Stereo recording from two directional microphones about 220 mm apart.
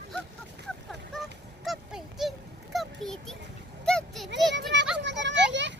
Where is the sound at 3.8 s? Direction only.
Centre (ahead or behind).